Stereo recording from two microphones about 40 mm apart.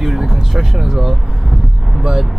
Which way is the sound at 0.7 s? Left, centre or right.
Centre.